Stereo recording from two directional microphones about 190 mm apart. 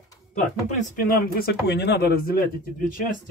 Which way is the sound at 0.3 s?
40° left (ahead or behind).